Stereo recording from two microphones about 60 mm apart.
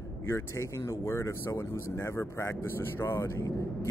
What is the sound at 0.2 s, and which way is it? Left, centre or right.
Speech, left.